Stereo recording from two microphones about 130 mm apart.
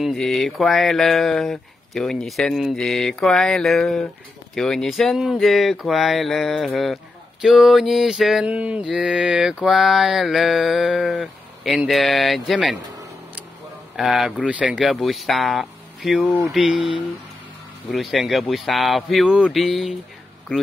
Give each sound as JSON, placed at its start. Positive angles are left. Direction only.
{"t": 0.0, "sound": "mantra", "side_deg": 0}
{"t": 13.9, "sound": "mantra", "side_deg": -5}